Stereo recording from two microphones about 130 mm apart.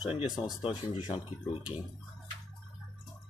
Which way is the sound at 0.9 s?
40° left (ahead or behind).